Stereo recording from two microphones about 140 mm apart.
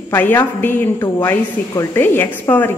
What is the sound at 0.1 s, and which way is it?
A woman's voice, 15° left (ahead or behind).